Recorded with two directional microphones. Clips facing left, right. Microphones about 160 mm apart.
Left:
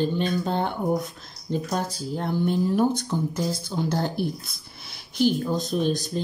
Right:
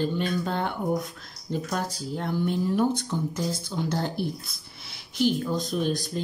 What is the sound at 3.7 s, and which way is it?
Speech, 45° left (ahead or behind).